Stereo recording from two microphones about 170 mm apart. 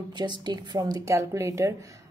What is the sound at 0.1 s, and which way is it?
A woman's voice, 25° right (ahead or behind).